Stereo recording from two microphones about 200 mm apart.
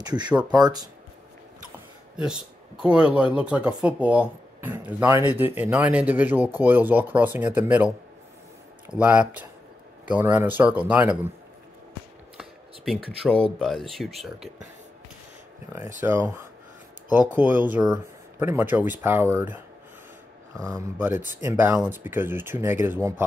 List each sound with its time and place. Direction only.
0.0 s speech: 20° right (ahead or behind)
2.8 s speech: 5° right (ahead or behind)
9.0 s speech: 5° right (ahead or behind)
12.4 s speech: centre (ahead or behind)
16.0 s speech: 10° right (ahead or behind)
17.4 s speech: 10° right (ahead or behind)